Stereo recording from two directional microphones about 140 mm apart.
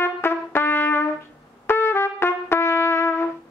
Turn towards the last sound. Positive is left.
turn(degrees=15)  # may be behind; listen again after turning